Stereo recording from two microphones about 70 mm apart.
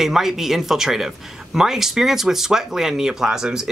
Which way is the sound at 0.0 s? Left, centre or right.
Centre.